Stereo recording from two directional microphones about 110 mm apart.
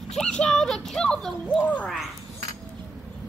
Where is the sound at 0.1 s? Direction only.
5° left (ahead or behind).